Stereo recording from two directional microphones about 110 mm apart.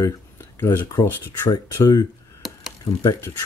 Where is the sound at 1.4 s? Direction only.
35° left (ahead or behind).